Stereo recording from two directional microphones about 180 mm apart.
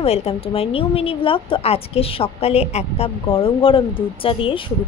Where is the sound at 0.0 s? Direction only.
35° left (ahead or behind).